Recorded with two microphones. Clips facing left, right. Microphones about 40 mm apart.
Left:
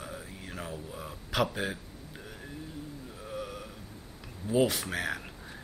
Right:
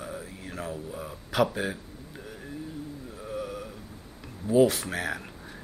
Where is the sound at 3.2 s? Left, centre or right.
Centre.